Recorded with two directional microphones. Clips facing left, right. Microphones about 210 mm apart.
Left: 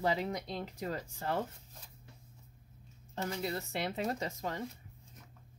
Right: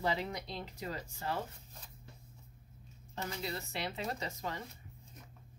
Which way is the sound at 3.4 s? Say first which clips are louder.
Left 3 dB; 50° left (ahead or behind).